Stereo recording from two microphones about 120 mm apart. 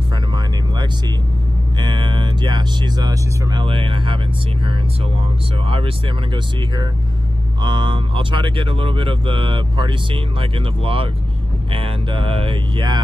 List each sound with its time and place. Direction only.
1.8 s speech: 40° right (ahead or behind)
5.7 s speech: 50° right (ahead or behind)
7.6 s speech: 40° right (ahead or behind)